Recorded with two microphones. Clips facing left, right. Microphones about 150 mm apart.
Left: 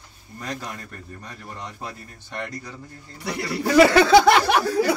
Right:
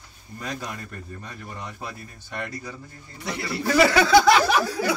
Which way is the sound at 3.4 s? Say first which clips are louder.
Left 3 dB; 15° left (ahead or behind).